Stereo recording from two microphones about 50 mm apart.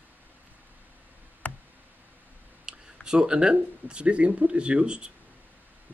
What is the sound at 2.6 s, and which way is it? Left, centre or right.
Speech, centre.